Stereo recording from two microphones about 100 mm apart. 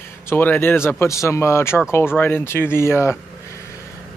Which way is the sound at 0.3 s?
20° left (ahead or behind).